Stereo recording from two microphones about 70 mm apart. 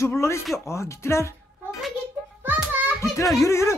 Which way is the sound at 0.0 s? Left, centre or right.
Left.